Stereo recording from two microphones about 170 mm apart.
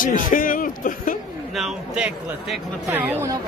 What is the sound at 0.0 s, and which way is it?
Speech, 50° left (ahead or behind).